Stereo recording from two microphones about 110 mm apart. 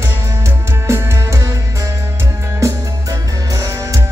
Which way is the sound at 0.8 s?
25° right (ahead or behind).